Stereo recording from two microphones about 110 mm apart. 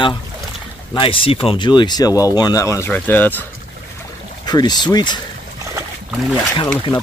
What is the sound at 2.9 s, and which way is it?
Speech, 15° left (ahead or behind).